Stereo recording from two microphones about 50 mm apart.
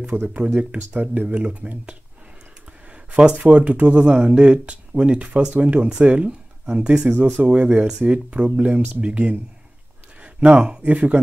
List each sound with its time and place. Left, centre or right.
0.1 s speech: right
1.3 s speech: right
2.9 s a sound: right
3.3 s speech: right
7.0 s speech: right
7.4 s speech: right
9.0 s speech: right